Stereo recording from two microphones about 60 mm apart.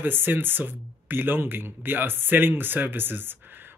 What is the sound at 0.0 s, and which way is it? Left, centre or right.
Speech, right.